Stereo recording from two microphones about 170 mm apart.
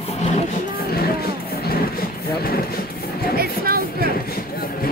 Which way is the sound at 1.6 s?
60° left (ahead or behind).